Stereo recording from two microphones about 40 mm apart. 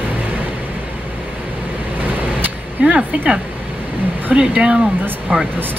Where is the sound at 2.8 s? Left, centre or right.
Right.